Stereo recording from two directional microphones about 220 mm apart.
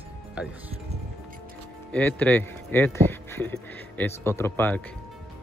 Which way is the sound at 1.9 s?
10° left (ahead or behind).